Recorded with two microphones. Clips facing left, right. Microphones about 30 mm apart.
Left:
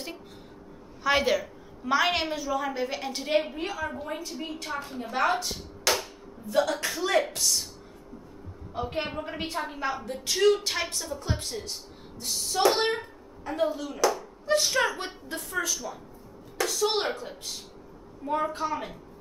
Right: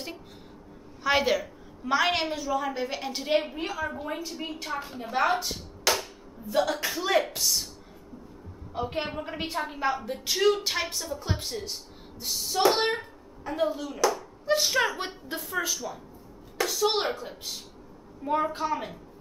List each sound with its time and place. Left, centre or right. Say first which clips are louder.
1.0 s a woman's voice: even; centre
8.7 s a woman's voice: even; centre